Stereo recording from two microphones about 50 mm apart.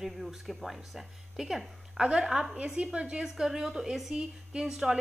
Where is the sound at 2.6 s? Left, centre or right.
Right.